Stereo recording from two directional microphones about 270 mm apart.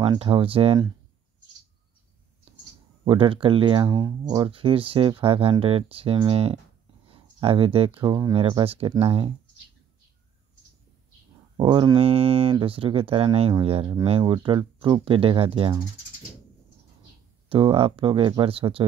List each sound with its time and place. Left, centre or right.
0.0 s speech: centre
3.1 s speech: centre
11.5 s speech: centre
17.5 s speech: centre